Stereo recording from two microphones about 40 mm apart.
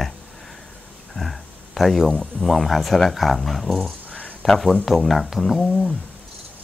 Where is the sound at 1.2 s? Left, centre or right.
Centre.